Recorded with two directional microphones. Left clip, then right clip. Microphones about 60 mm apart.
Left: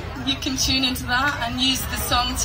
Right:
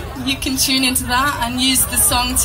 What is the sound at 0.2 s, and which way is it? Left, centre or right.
A woman's voice, right.